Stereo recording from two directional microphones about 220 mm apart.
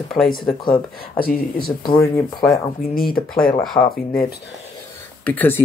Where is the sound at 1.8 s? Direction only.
15° left (ahead or behind).